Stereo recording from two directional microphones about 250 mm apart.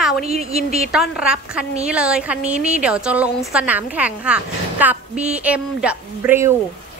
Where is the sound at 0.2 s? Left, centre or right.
Right.